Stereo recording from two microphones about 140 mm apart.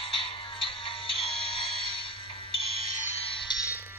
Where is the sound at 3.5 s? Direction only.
30° left (ahead or behind).